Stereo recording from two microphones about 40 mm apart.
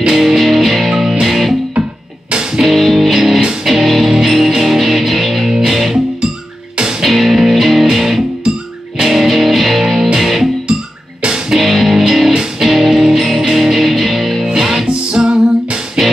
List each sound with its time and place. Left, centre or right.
0.1 s music: centre
2.6 s music: centre
7.0 s music: centre
11.2 s music: centre
11.5 s music: centre
14.9 s music: right